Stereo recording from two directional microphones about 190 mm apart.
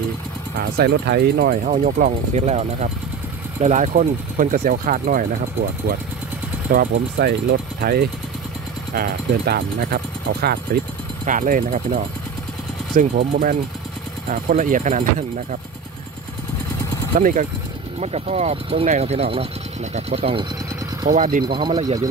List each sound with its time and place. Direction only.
0.6 s speech: 55° right (ahead or behind)
6.7 s speech: 55° right (ahead or behind)
17.1 s speech: 40° right (ahead or behind)
21.1 s speech: 45° right (ahead or behind)
21.5 s speech: 25° right (ahead or behind)